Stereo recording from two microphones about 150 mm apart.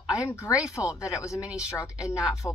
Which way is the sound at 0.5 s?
5° right (ahead or behind).